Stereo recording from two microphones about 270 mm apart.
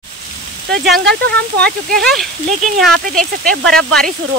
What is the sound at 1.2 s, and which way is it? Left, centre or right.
Speech, right.